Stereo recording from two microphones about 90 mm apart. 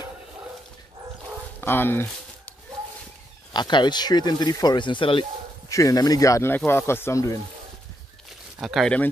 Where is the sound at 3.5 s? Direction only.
55° left (ahead or behind).